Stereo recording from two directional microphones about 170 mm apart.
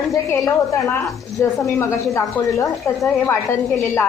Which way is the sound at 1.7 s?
15° left (ahead or behind).